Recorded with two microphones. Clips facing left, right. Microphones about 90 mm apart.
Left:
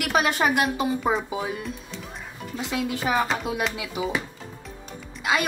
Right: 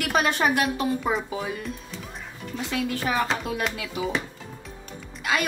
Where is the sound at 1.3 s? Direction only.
15° left (ahead or behind).